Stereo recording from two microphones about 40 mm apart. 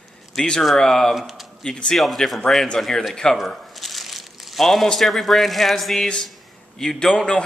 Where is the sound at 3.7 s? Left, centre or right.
Centre.